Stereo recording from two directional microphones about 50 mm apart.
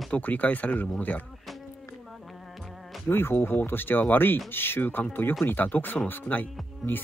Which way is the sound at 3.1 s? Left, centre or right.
Left.